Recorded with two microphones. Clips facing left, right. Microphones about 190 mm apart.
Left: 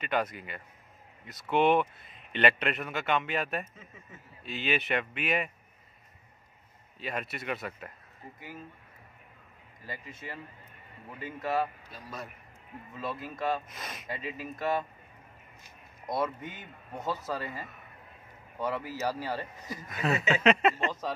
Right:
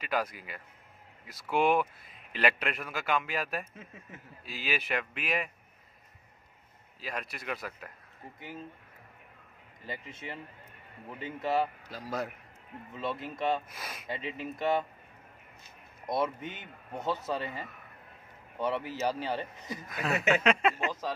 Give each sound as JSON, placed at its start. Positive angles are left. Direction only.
{"t": 0.0, "sound": "a man's voice", "side_deg": 0}
{"t": 7.0, "sound": "a man's voice", "side_deg": 0}
{"t": 9.8, "sound": "speech", "side_deg": -25}
{"t": 11.9, "sound": "a man's voice", "side_deg": -90}
{"t": 12.9, "sound": "speech", "side_deg": -25}
{"t": 13.7, "sound": "a man's voice", "side_deg": -5}
{"t": 14.0, "sound": "speech", "side_deg": -25}
{"t": 16.1, "sound": "speech", "side_deg": -25}
{"t": 18.6, "sound": "speech", "side_deg": -25}
{"t": 19.9, "sound": "a man's voice", "side_deg": 0}